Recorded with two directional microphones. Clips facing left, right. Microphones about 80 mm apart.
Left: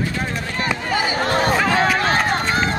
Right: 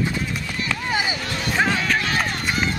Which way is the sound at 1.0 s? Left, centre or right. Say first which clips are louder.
Left 8 dB; left.